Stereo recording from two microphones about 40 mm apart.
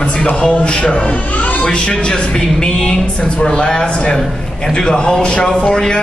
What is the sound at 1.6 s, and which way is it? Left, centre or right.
A man's voice, left.